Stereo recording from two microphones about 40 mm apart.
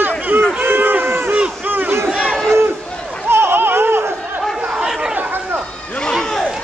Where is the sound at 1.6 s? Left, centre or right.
Right.